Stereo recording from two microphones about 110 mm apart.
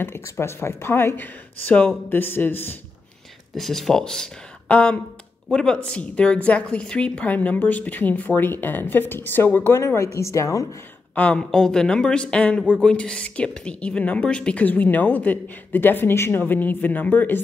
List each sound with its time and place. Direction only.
0.0 s speech: 25° left (ahead or behind)
3.5 s a woman's voice: centre (ahead or behind); by 10.8 s 30° left (ahead or behind)
11.1 s a woman's voice: 10° left (ahead or behind)